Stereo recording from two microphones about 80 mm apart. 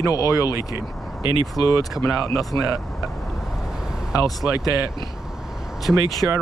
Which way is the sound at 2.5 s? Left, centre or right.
Right.